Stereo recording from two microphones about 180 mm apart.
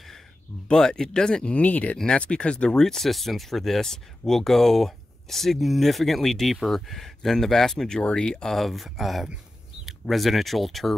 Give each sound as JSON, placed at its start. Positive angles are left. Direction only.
{"t": 0.7, "sound": "speech", "side_deg": 5}